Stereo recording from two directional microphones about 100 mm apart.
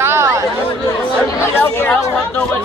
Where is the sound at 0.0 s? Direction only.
25° right (ahead or behind).